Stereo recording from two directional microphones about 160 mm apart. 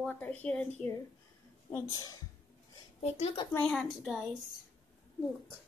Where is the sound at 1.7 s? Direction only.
25° left (ahead or behind).